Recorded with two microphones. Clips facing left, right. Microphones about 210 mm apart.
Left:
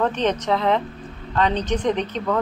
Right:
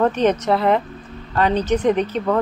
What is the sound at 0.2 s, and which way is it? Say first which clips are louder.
A woman's voice: right 4 dB; 10° right (ahead or behind).